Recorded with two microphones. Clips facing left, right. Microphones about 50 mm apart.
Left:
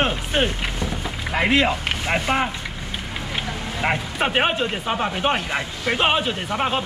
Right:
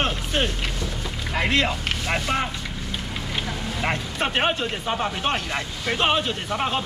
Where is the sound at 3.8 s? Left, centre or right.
Centre.